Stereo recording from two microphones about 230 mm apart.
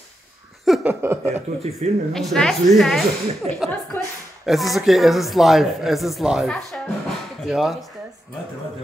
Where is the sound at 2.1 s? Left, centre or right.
Centre.